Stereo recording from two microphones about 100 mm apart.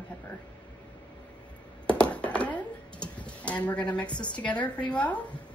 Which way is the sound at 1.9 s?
10° left (ahead or behind).